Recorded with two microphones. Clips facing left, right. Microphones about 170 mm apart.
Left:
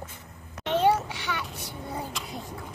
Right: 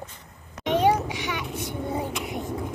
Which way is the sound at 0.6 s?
15° right (ahead or behind).